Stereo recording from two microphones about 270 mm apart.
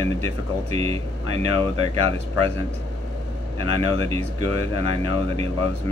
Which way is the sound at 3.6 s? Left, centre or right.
Centre.